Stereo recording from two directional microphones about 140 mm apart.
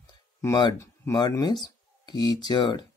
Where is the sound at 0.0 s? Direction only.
25° left (ahead or behind).